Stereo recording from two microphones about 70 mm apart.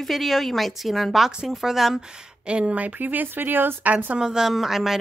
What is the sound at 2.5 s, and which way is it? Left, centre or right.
Speech, centre.